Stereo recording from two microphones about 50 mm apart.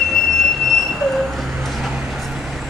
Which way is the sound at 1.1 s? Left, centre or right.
Centre.